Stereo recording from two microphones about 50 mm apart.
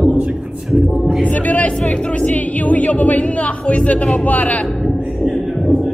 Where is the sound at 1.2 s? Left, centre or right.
Left.